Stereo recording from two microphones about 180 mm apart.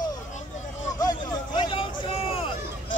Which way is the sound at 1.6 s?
30° left (ahead or behind).